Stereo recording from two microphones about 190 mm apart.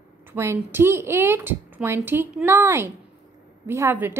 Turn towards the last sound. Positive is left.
turn(degrees=-10)  # may be behind; listen again after turning